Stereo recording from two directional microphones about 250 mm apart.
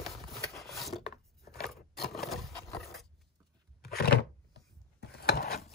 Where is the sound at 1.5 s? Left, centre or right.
Centre.